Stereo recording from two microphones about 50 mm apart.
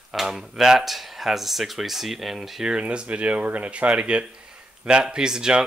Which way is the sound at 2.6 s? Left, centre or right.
Right.